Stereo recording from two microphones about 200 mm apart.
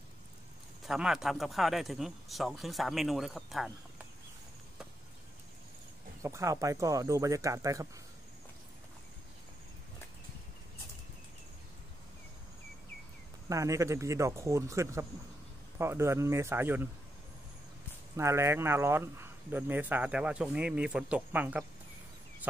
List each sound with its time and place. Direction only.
0.8 s speech: 5° right (ahead or behind)
6.2 s speech: 15° right (ahead or behind)
13.5 s speech: 15° right (ahead or behind)
18.1 s speech: 15° right (ahead or behind)